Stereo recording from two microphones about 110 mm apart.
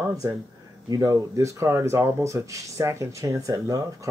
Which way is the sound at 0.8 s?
30° right (ahead or behind).